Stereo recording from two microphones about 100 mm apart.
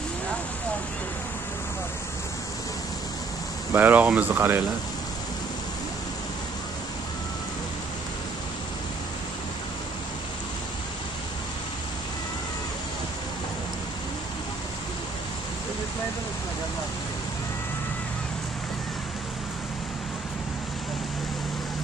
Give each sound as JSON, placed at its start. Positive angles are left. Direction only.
{"t": 3.7, "sound": "speech", "side_deg": -15}